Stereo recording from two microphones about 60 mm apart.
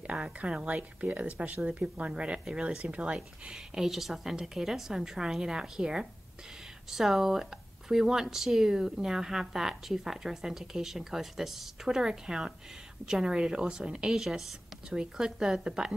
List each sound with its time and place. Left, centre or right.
0.0 s speech: centre
3.2 s speech: centre